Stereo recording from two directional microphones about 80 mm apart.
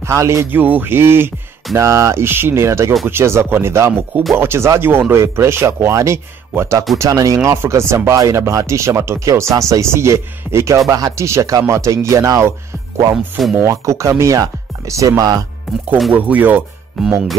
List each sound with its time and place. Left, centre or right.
0.0 s speech: right
0.6 s speech: right
7.0 s speech: right
7.4 s speech: right
13.1 s speech: centre
13.6 s speech: right
16.1 s speech: right
17.0 s speech: centre